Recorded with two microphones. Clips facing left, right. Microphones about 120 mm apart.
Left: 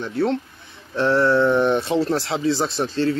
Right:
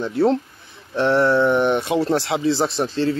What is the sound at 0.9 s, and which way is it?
Speech, 20° right (ahead or behind).